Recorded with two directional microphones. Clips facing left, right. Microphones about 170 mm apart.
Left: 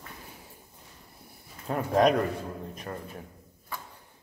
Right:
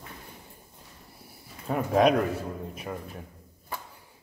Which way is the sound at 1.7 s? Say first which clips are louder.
Right 1 dB; centre (ahead or behind).